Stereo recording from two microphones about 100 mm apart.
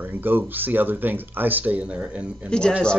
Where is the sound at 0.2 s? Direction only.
20° right (ahead or behind).